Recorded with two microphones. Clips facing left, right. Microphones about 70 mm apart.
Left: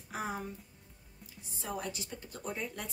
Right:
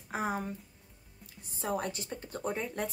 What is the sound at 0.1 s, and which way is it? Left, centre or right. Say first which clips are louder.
Music: right 4 dB; right.